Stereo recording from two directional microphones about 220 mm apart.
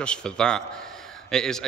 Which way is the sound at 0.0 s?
5° left (ahead or behind).